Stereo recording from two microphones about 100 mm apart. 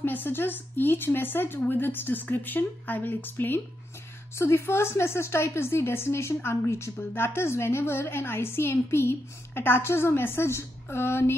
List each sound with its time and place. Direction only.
0.0 s a woman's voice: 20° left (ahead or behind)